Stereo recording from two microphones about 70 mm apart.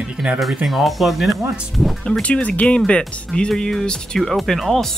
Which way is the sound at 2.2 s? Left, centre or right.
Centre.